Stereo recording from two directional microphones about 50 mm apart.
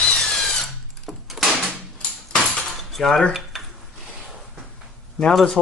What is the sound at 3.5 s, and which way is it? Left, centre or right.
Dishes, centre.